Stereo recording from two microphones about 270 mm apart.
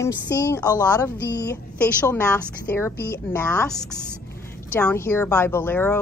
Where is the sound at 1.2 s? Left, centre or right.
Left.